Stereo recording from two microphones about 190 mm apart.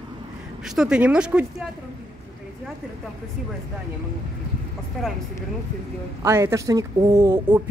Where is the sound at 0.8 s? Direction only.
5° right (ahead or behind).